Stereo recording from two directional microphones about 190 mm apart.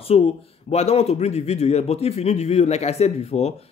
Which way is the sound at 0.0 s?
30° left (ahead or behind).